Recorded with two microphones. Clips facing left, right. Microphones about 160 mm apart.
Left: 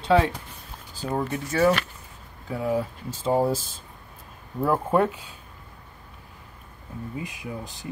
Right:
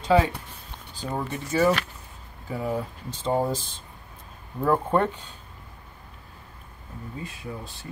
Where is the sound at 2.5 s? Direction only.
Centre (ahead or behind).